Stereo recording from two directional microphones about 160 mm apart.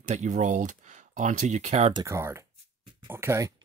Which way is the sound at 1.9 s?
20° right (ahead or behind).